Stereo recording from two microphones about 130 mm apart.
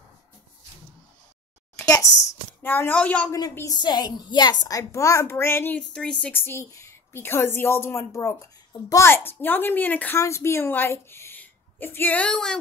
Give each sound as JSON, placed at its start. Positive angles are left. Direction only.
{"t": 1.8, "sound": "a sound", "side_deg": 25}
{"t": 2.6, "sound": "a woman's voice", "side_deg": 15}
{"t": 3.3, "sound": "a woman's voice", "side_deg": 30}
{"t": 5.8, "sound": "a woman's voice", "side_deg": 5}